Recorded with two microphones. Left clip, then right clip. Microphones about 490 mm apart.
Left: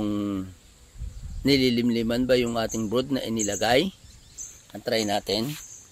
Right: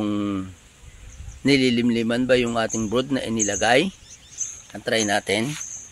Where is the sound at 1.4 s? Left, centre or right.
Left.